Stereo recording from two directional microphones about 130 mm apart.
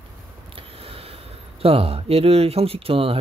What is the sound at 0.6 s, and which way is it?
Speech, 45° right (ahead or behind).